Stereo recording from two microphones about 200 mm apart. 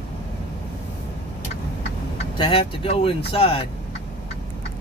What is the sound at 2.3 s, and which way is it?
Speech, 25° left (ahead or behind).